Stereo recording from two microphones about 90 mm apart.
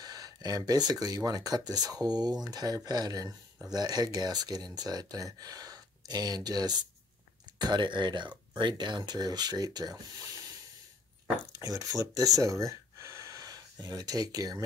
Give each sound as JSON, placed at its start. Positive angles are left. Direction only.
{"t": 0.0, "sound": "speech", "side_deg": -45}
{"t": 11.5, "sound": "speech", "side_deg": -40}